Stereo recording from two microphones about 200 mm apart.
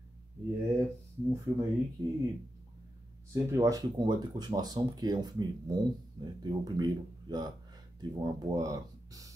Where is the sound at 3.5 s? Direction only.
15° right (ahead or behind).